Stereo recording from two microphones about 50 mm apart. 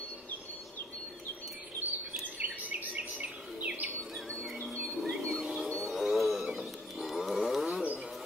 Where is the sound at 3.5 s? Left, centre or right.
Right.